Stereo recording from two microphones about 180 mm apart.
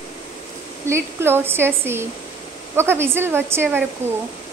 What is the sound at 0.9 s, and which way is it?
Speech, 15° right (ahead or behind).